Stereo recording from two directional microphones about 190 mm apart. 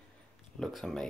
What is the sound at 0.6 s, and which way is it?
Speech, centre (ahead or behind).